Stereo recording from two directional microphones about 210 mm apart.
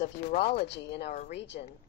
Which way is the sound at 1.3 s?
55° left (ahead or behind).